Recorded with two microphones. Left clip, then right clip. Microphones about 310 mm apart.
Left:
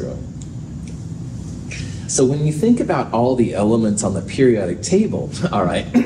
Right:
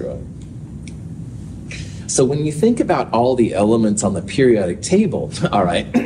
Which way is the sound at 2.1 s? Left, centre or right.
Right.